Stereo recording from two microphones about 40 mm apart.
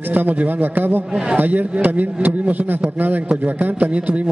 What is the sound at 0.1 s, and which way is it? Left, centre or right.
Speech, right.